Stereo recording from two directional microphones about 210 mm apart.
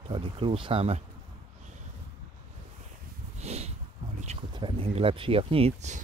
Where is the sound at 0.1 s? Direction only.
25° right (ahead or behind).